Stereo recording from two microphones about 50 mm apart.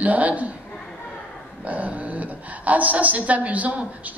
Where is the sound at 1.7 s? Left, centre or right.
Right.